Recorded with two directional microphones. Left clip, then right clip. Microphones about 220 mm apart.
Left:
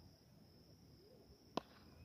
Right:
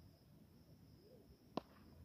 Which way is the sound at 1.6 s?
Centre (ahead or behind).